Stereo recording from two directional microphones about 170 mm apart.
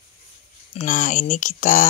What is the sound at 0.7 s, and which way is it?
Speech, 45° left (ahead or behind).